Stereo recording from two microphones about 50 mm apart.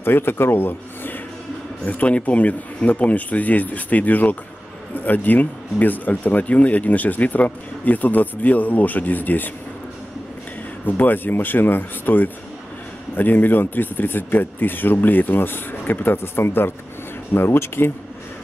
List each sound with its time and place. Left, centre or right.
0.0 s speech: left
1.9 s speech: left
10.9 s speech: left